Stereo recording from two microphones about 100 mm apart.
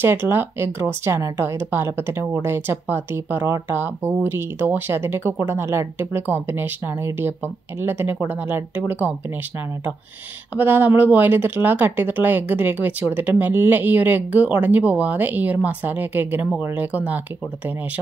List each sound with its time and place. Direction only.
0.0 s speech: 20° right (ahead or behind)
10.5 s speech: 20° right (ahead or behind)